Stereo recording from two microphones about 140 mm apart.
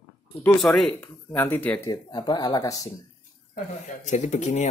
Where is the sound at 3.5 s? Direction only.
65° left (ahead or behind).